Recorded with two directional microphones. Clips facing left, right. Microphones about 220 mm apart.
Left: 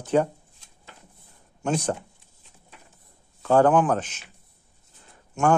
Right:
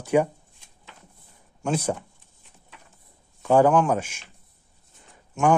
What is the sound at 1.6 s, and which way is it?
Speech, 5° right (ahead or behind).